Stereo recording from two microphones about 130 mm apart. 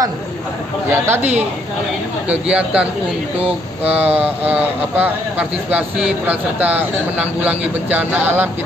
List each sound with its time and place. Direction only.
0.8 s speech: 15° right (ahead or behind)
2.2 s speech: 10° right (ahead or behind)